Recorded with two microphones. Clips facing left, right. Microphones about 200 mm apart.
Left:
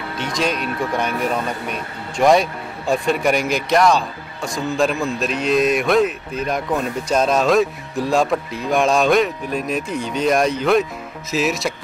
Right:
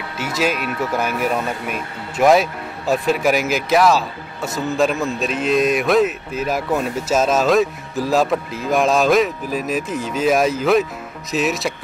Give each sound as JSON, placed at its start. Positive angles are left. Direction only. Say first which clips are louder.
{"t": 0.2, "sound": "speech", "louder": "right 1 dB", "side_deg": -5}